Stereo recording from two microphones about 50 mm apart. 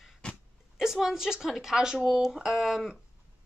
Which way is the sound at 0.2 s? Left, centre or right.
Left.